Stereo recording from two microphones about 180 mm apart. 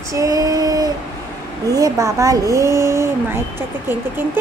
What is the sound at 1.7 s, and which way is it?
Speech, 20° right (ahead or behind).